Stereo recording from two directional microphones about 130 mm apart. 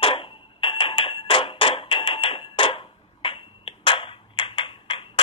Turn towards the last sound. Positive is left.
turn(degrees=40)  # may be behind; listen again after turning